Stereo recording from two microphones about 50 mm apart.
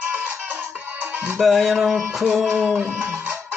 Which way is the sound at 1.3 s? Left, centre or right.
Centre.